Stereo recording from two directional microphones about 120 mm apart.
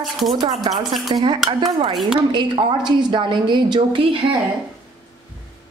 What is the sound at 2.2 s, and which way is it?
A woman's voice, 45° right (ahead or behind).